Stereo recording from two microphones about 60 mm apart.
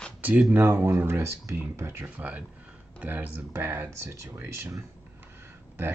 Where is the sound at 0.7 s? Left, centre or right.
Right.